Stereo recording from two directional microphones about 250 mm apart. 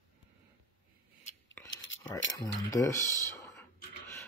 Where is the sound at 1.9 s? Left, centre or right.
Left.